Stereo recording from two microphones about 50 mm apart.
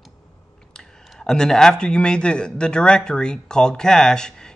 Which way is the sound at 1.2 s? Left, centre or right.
Centre.